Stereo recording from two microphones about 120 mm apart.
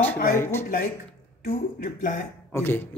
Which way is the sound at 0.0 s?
20° left (ahead or behind).